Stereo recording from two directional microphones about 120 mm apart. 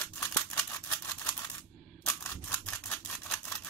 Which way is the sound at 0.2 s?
20° left (ahead or behind).